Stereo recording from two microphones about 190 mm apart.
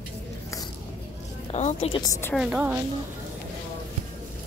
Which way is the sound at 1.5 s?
35° left (ahead or behind).